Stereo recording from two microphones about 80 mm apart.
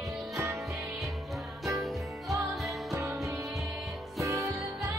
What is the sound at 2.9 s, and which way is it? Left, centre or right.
Music, right.